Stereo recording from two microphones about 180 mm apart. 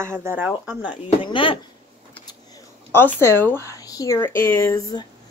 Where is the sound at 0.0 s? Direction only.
15° right (ahead or behind).